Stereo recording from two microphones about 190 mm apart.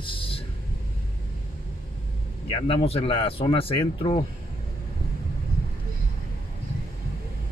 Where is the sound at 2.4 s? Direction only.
30° left (ahead or behind).